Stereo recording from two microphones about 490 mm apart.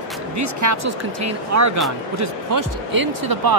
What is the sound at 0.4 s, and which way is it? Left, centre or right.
Speech, right.